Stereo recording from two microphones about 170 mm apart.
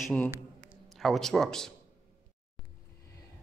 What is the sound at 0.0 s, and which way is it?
A man's voice, 5° left (ahead or behind).